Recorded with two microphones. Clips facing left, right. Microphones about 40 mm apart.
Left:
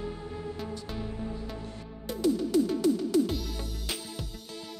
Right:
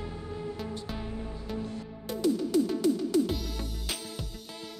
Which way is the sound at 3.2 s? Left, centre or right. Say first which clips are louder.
Even; centre.